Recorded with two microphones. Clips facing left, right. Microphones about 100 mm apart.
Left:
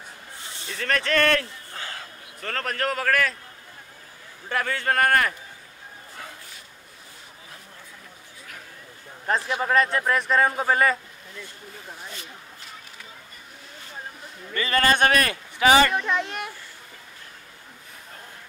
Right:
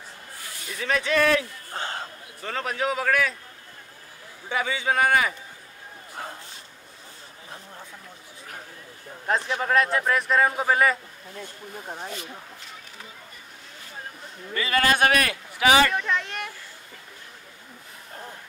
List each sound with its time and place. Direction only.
0.4 s a sound: 25° left (ahead or behind)
0.7 s a man's voice: 5° right (ahead or behind)
1.7 s a sound: 30° right (ahead or behind)
2.4 s a man's voice: 5° right (ahead or behind)
4.5 s a man's voice: centre (ahead or behind)
6.1 s a sound: 35° right (ahead or behind)
9.2 s a man's voice: centre (ahead or behind)
11.9 s speech: 40° right (ahead or behind)
14.5 s a man's voice: 5° right (ahead or behind)
15.9 s speech: 10° left (ahead or behind)